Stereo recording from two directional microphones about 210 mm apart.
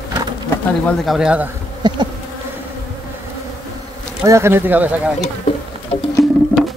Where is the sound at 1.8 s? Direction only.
20° right (ahead or behind).